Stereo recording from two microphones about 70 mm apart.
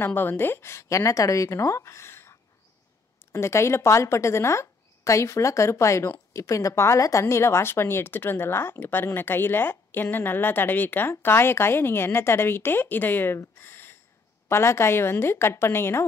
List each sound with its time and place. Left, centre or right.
0.0 s a woman's voice: left
13.6 s a sound: left
14.5 s a woman's voice: left